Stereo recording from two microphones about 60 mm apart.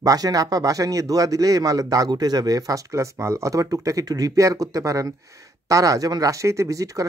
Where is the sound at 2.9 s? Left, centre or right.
Right.